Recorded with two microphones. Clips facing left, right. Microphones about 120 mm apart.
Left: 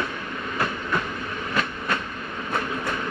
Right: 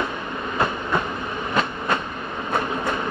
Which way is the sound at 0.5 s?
25° right (ahead or behind).